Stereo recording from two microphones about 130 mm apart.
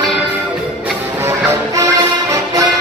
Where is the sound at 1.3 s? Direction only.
25° right (ahead or behind).